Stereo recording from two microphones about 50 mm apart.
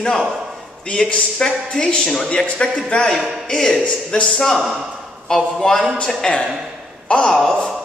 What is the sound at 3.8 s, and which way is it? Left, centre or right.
Speech, left.